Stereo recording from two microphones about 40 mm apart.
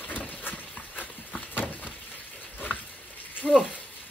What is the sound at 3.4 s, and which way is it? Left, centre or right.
Speech, centre.